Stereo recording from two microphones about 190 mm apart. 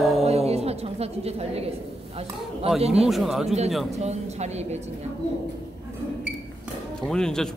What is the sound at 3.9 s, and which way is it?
Speech, 35° right (ahead or behind).